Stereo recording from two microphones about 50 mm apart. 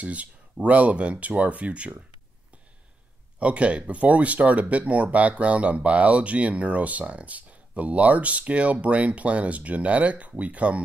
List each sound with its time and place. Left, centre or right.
0.0 s speech: right
3.3 s speech: right